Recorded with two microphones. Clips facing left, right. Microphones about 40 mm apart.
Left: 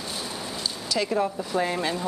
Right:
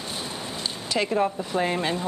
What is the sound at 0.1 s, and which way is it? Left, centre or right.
Speech, right.